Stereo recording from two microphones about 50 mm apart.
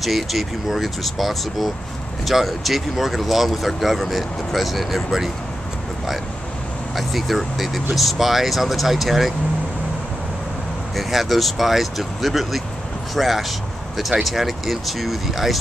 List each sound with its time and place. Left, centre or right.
0.0 s speech: centre
7.0 s speech: centre
11.0 s speech: centre